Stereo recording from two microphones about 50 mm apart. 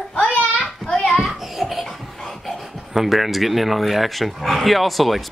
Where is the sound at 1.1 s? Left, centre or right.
Centre.